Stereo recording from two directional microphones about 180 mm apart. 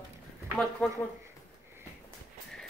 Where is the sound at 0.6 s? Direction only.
Centre (ahead or behind).